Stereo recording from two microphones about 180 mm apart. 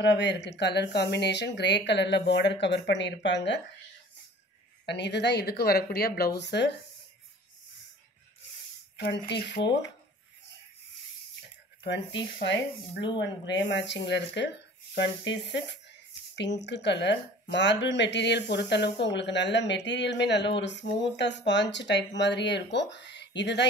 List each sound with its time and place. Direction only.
0.0 s speech: 75° left (ahead or behind)
4.8 s speech: 75° left (ahead or behind)
8.9 s speech: 70° left (ahead or behind)
11.8 s speech: 80° left
13.2 s speech: 80° left